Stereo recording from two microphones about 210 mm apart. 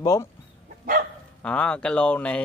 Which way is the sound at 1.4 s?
5° left (ahead or behind).